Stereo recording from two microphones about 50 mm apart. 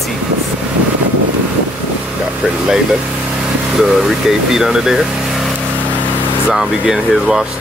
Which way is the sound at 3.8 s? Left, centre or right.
Centre.